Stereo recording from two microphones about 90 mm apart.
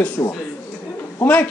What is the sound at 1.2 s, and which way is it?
Speech, 15° left (ahead or behind).